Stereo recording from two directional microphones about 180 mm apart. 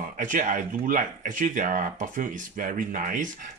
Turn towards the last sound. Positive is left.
turn(degrees=-45)  # may be behind; listen again after turning